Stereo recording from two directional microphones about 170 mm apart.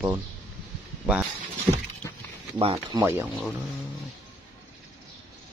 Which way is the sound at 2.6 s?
35° right (ahead or behind).